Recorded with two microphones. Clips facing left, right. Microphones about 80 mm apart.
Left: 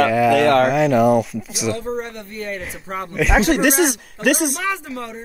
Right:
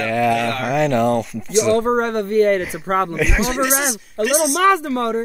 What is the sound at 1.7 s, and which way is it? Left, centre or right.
Speech, right.